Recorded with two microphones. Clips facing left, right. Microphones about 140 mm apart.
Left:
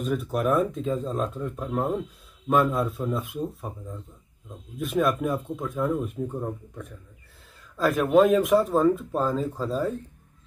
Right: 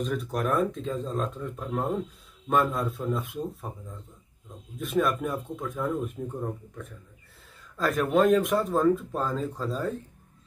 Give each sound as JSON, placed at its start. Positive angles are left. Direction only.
{"t": 0.0, "sound": "speech", "side_deg": 5}
{"t": 4.7, "sound": "speech", "side_deg": 0}